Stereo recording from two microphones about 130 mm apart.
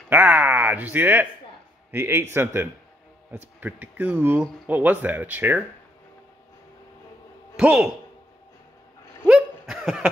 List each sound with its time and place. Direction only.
0.1 s speech: 15° right (ahead or behind)
7.5 s a man's voice: 5° right (ahead or behind)
9.2 s hiccup: 5° right (ahead or behind)